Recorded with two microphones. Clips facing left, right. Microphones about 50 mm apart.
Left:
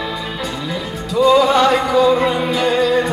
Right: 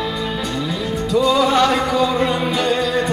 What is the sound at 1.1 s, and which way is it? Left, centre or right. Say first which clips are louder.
Music: left 4 dB; centre.